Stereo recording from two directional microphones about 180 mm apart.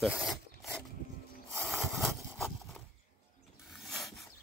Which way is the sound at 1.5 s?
5° left (ahead or behind).